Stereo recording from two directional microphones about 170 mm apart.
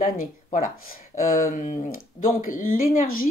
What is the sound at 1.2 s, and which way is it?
Speech, 50° left (ahead or behind).